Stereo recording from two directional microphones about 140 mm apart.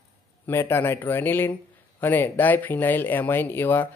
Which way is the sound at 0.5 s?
15° left (ahead or behind).